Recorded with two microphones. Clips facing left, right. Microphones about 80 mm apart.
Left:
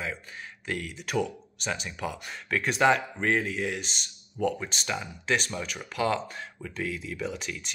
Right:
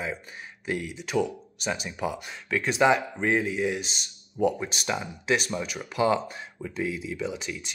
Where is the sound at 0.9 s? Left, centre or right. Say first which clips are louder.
Right 2 dB; centre.